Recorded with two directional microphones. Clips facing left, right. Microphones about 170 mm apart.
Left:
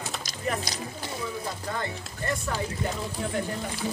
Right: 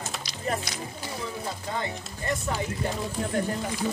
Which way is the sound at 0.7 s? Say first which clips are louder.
Left 1 dB; 35° left (ahead or behind).